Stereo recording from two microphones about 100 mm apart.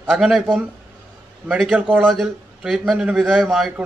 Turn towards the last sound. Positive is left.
turn(degrees=0)  # may be behind; listen again after turning